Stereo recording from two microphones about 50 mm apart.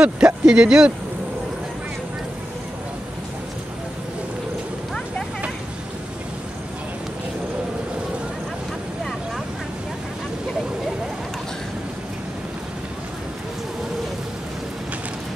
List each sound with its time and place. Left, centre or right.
0.0 s speech: centre